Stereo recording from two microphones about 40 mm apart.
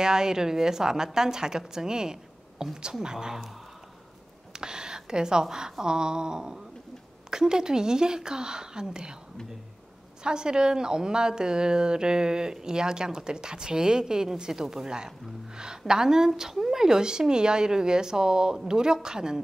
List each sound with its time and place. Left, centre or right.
0.0 s a woman's voice: centre
4.6 s a woman's voice: centre
10.2 s a woman's voice: centre